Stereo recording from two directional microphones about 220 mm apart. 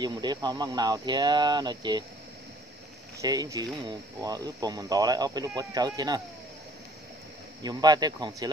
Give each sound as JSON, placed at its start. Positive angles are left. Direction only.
{"t": 0.0, "sound": "speech", "side_deg": -20}
{"t": 3.2, "sound": "speech", "side_deg": -15}
{"t": 7.6, "sound": "speech", "side_deg": -20}